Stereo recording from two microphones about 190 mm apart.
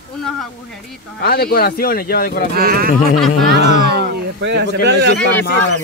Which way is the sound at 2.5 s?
55° right (ahead or behind).